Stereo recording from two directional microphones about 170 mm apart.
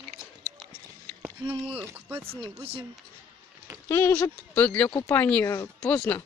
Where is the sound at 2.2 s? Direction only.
35° right (ahead or behind).